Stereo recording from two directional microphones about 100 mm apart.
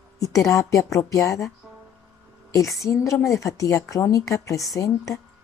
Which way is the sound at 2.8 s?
25° left (ahead or behind).